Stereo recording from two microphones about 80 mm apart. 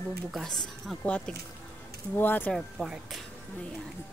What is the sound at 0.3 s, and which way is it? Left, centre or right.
Speech, centre.